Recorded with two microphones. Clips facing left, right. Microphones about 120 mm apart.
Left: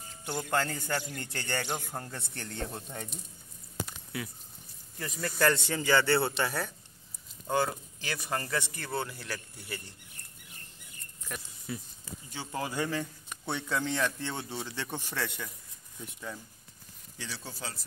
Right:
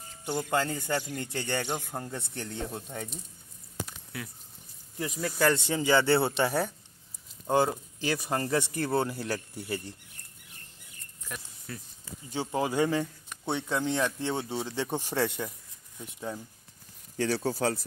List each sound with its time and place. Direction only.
0.3 s speech: 10° right (ahead or behind)
3.8 s a sound: 5° left (ahead or behind)
4.9 s speech: 10° right (ahead or behind)
5.7 s speech: 15° right (ahead or behind)
8.5 s speech: 35° right (ahead or behind)
11.7 s speech: 10° left (ahead or behind)
12.3 s speech: 25° right (ahead or behind)
17.2 s speech: 50° right (ahead or behind)